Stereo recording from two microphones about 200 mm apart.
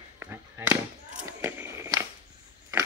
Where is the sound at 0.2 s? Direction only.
10° right (ahead or behind).